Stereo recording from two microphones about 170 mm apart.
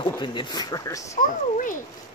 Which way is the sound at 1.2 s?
50° left (ahead or behind).